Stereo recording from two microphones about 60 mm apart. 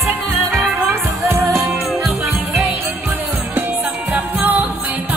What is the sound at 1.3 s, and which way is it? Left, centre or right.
Music, right.